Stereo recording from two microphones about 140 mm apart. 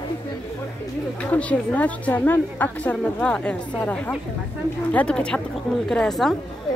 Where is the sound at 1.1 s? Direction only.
10° left (ahead or behind).